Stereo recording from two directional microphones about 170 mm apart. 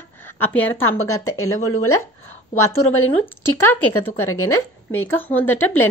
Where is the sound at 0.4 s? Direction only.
10° left (ahead or behind).